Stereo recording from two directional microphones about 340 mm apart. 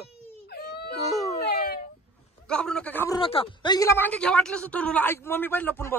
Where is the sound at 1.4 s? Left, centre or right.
Left.